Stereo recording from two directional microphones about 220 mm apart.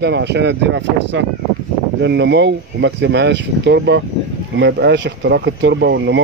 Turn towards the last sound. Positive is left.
turn(degrees=-55)  # may be behind; listen again after turning